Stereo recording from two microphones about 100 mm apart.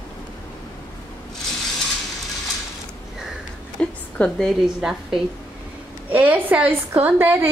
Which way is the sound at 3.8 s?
10° left (ahead or behind).